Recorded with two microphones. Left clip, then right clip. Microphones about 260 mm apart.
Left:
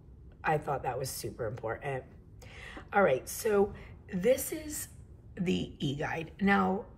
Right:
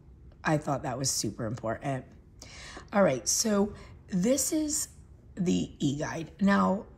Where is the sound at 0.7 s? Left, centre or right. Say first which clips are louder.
Right 3 dB; right.